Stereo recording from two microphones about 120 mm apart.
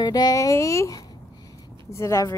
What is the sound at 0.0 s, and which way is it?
Speech, 30° left (ahead or behind).